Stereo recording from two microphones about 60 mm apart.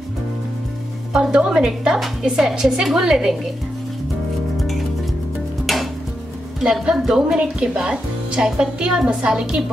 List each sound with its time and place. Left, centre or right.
1.1 s a woman's voice: centre
5.7 s music: centre
6.6 s a woman's voice: centre